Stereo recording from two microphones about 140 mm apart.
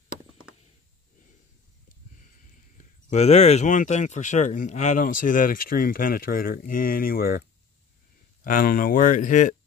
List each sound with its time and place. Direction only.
3.1 s speech: 55° left (ahead or behind); by 7.4 s 90° left
8.5 s speech: 85° left; by 9.6 s 65° left (ahead or behind)